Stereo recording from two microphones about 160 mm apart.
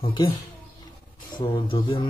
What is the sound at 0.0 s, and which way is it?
Speech, 30° left (ahead or behind).